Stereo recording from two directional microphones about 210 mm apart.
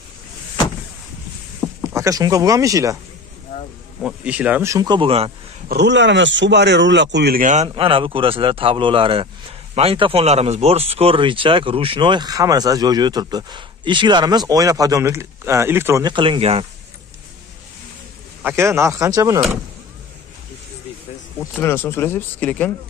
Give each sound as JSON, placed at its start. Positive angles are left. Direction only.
{"t": 1.8, "sound": "speech", "side_deg": -15}
{"t": 4.0, "sound": "speech", "side_deg": -5}
{"t": 5.7, "sound": "speech", "side_deg": -55}
{"t": 18.4, "sound": "speech", "side_deg": -10}
{"t": 21.4, "sound": "speech", "side_deg": 10}